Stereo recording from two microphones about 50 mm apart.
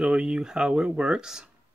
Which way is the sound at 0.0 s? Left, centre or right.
Centre.